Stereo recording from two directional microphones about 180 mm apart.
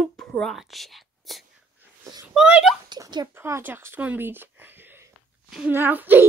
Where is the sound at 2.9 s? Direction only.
25° right (ahead or behind).